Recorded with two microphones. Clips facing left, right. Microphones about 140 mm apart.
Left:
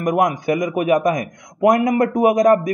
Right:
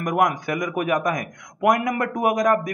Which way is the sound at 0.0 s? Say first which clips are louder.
Left 4 dB; 25° left (ahead or behind).